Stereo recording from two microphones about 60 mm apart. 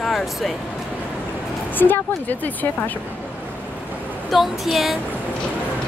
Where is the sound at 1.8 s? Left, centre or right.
Left.